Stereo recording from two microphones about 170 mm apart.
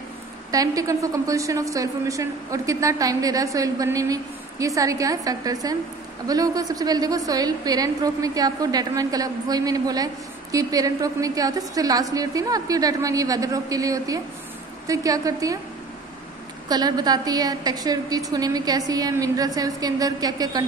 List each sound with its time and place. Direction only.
0.5 s a woman's voice: 20° right (ahead or behind)
16.6 s a woman's voice: 25° right (ahead or behind)